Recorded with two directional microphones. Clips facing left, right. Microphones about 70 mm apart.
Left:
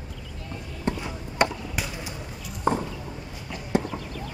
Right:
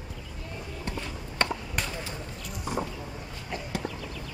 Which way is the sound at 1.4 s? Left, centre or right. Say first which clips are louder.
Left 5 dB; centre.